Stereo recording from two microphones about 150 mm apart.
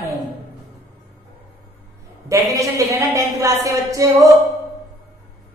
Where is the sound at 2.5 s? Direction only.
20° right (ahead or behind).